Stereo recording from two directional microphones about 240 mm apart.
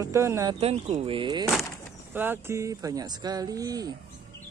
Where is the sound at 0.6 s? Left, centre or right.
Right.